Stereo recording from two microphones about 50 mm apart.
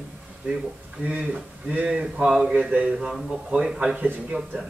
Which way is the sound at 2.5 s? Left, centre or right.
Right.